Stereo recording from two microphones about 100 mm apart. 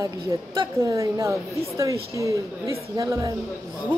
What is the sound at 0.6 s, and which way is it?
A woman's voice, 35° right (ahead or behind).